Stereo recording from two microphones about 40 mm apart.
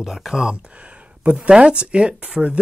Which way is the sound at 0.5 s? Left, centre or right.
Right.